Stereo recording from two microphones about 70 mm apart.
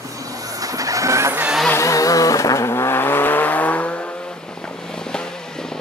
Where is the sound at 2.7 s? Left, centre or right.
Left.